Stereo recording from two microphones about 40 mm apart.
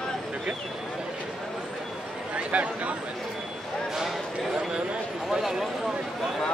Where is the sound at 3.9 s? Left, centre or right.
Centre.